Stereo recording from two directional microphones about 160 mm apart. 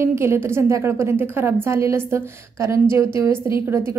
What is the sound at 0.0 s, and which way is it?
A woman's voice, 15° right (ahead or behind).